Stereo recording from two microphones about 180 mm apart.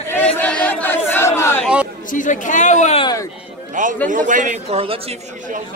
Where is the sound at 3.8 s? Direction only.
45° right (ahead or behind).